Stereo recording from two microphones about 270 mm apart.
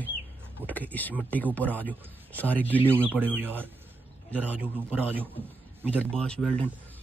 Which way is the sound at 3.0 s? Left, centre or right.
Centre.